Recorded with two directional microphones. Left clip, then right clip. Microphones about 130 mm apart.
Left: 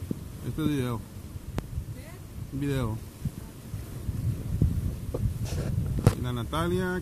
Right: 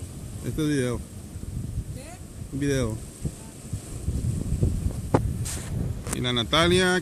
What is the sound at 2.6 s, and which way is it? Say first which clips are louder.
Speech: right 6 dB; 5° right (ahead or behind).